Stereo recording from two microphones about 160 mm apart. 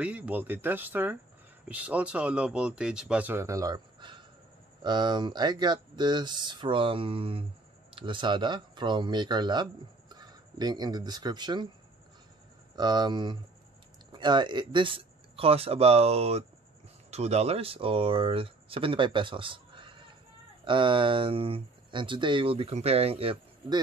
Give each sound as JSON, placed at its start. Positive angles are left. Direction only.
{"t": 0.0, "sound": "speech", "side_deg": -10}
{"t": 12.7, "sound": "speech", "side_deg": -25}